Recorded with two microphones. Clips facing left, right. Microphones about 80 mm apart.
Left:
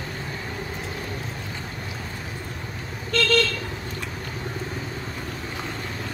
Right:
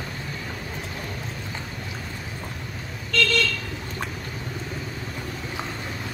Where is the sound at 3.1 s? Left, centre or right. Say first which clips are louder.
Left 2 dB; left.